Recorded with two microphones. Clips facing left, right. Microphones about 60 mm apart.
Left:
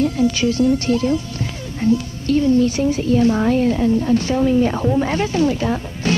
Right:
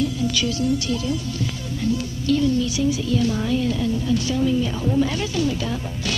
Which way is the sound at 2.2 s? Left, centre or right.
Left.